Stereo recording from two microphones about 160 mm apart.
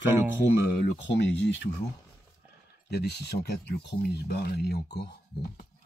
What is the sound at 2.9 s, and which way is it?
Speech, 90° left.